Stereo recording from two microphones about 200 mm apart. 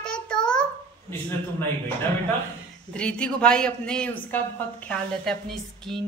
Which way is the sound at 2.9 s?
5° left (ahead or behind).